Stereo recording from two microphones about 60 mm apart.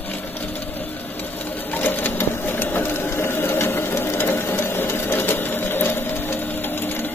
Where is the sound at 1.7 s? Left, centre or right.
Left.